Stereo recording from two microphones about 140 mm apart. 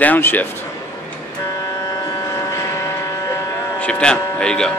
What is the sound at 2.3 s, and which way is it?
Vehicle, 20° left (ahead or behind).